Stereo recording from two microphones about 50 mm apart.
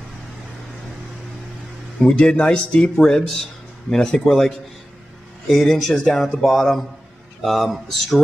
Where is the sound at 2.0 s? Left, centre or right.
Centre.